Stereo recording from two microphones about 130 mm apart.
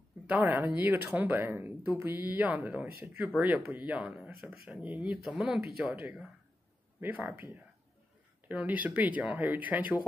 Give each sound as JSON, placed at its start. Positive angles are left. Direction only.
{"t": 0.3, "sound": "speech", "side_deg": -15}
{"t": 5.9, "sound": "speech", "side_deg": -15}